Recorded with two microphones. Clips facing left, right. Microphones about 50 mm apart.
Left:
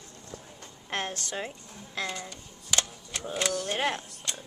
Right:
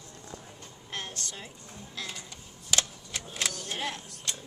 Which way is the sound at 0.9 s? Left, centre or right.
Left.